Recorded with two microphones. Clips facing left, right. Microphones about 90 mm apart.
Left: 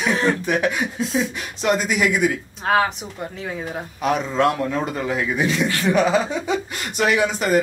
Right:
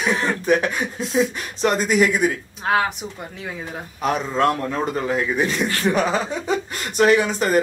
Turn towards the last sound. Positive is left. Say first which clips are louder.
# right 2 dB
turn(degrees=-40)  # may be behind; listen again after turning